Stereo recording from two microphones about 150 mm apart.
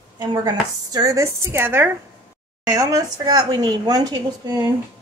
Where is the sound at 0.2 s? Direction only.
25° right (ahead or behind).